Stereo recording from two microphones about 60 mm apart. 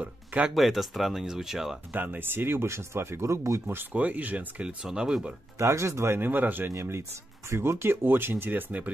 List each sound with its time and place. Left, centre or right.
0.0 s music: right
0.6 s speech: centre
1.9 s speech: right
3.9 s speech: right
4.8 s speech: centre
5.6 s speech: right
6.7 s speech: right